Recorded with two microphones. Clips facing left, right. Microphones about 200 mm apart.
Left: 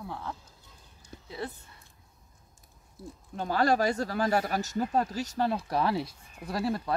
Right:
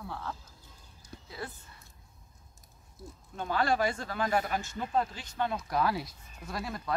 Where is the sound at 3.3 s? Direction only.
40° left (ahead or behind).